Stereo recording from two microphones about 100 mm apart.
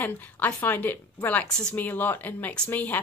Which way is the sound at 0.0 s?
20° left (ahead or behind).